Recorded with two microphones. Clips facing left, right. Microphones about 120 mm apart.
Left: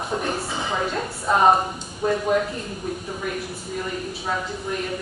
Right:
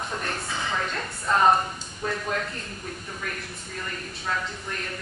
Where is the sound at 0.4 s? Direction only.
25° left (ahead or behind).